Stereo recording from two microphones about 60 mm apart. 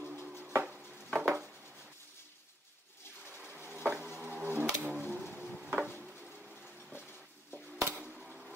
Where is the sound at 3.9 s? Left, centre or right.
Centre.